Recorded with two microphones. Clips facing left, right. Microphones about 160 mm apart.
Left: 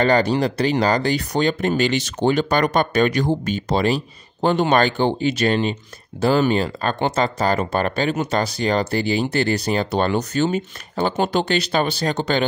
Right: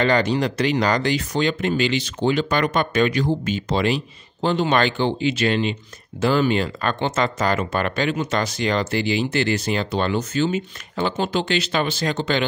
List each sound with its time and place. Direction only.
0.0 s speech: 40° left (ahead or behind)
4.4 s speech: 55° left (ahead or behind)
4.6 s speech: 45° left (ahead or behind)